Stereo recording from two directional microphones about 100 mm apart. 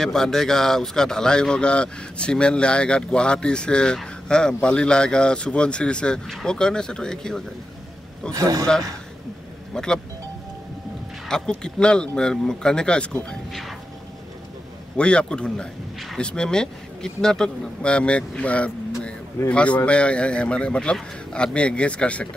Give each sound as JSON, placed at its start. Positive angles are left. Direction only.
{"t": 0.0, "sound": "speech", "side_deg": 5}
{"t": 8.3, "sound": "a man's voice", "side_deg": -35}
{"t": 11.2, "sound": "speech", "side_deg": 5}
{"t": 15.0, "sound": "speech", "side_deg": 10}